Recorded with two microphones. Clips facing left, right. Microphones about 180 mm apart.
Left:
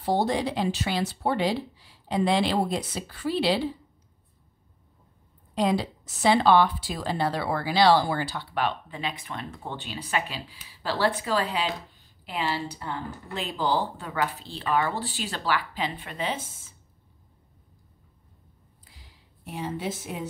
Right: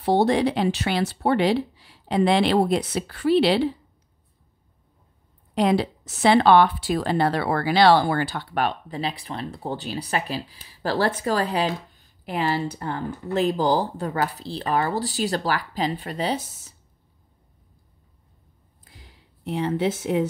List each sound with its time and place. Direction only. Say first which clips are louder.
0.0 s speech: right 6 dB; 70° right (ahead or behind)
5.5 s a woman's voice: right 4 dB; 65° right (ahead or behind); by 16.7 s 40° right (ahead or behind)
18.9 s speech: right 7 dB; 70° right (ahead or behind)